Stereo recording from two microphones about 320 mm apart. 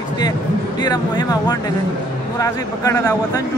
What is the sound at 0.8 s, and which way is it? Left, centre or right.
A man's voice, centre.